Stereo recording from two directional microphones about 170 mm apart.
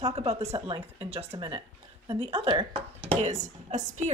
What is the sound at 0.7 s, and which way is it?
Speech, 35° right (ahead or behind).